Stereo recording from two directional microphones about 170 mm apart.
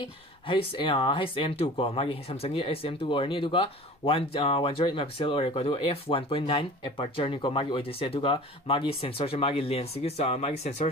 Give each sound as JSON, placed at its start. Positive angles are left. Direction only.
{"t": 0.0, "sound": "speech", "side_deg": 30}